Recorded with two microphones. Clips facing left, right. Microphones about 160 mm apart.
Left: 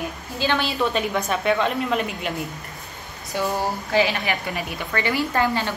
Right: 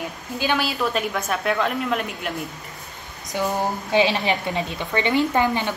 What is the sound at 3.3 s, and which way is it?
A woman's voice, 15° right (ahead or behind).